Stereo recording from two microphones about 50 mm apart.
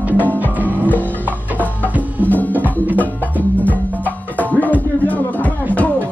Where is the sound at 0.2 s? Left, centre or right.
Left.